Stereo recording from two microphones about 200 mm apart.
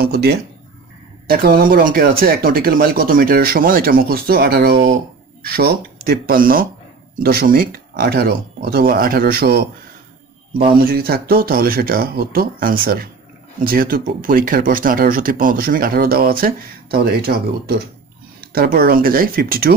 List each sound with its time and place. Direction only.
0.0 s a sound: 50° right (ahead or behind)
1.2 s speech: 50° right (ahead or behind)
10.8 s speech: 50° right (ahead or behind)